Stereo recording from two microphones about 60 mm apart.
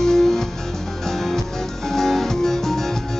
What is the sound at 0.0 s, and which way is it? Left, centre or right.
Music, centre.